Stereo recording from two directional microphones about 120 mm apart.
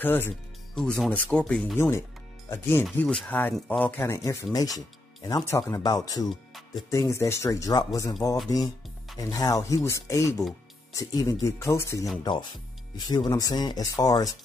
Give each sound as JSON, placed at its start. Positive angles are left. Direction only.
{"t": 0.0, "sound": "speech", "side_deg": 15}
{"t": 0.7, "sound": "speech", "side_deg": 5}
{"t": 1.8, "sound": "speech", "side_deg": 20}
{"t": 3.0, "sound": "speech", "side_deg": 10}
{"t": 4.0, "sound": "speech", "side_deg": 25}
{"t": 6.2, "sound": "music", "side_deg": 0}
{"t": 6.9, "sound": "speech", "side_deg": 25}
{"t": 12.2, "sound": "speech", "side_deg": 40}